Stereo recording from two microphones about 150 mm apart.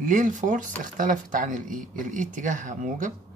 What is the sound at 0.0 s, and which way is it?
Speech, 60° right (ahead or behind).